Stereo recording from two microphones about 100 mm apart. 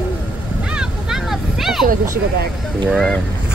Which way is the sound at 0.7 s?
5° right (ahead or behind).